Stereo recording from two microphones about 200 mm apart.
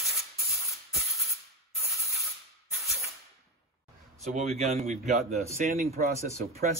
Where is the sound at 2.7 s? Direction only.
Centre (ahead or behind).